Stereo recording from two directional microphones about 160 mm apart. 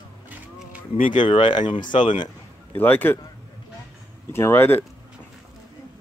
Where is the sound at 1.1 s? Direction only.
30° left (ahead or behind).